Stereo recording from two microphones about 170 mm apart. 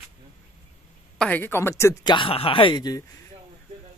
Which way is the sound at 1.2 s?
10° left (ahead or behind).